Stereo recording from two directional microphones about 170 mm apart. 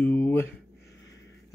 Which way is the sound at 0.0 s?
10° left (ahead or behind).